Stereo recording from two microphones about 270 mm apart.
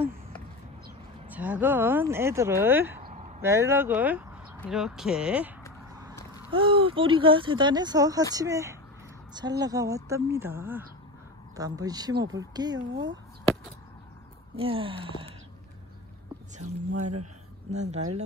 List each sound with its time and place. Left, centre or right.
1.3 s speech: centre
3.1 s a sound: right
3.3 s speech: centre
6.5 s speech: centre
14.6 s speech: centre
17.6 s speech: right